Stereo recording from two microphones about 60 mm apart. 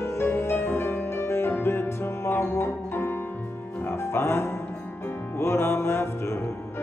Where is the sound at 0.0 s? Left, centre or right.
Left.